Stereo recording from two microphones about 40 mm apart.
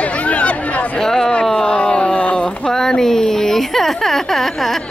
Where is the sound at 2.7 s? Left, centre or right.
Centre.